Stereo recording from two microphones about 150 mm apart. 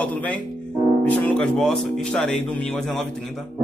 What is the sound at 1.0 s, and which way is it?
Speech, 10° left (ahead or behind).